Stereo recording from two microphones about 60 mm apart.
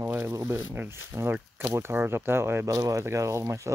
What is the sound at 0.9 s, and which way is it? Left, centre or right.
Speech, right.